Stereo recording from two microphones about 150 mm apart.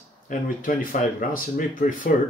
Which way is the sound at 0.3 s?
65° left (ahead or behind).